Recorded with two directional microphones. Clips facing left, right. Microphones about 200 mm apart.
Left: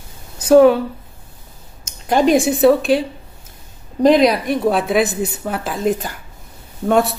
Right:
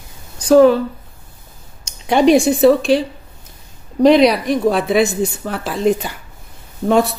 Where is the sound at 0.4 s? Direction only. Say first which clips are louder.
Even; 5° left (ahead or behind).